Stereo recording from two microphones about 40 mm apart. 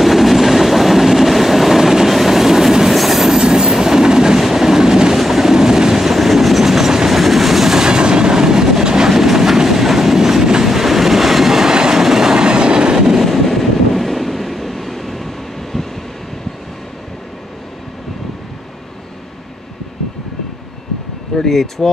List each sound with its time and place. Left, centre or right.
0.0 s train: centre
7.9 s train: right
12.4 s train: right
13.2 s train: centre
21.4 s speech: centre